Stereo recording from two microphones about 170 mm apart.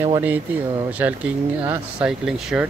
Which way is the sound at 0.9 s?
10° right (ahead or behind).